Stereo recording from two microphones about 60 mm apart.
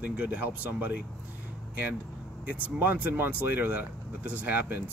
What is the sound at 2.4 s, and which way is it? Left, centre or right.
Speech, right.